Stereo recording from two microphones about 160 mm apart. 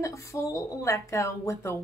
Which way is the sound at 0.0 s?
20° left (ahead or behind).